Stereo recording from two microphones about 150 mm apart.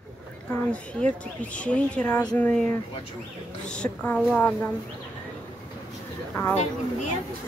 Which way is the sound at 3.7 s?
5° left (ahead or behind).